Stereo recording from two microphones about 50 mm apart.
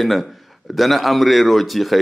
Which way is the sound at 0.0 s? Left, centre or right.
Centre.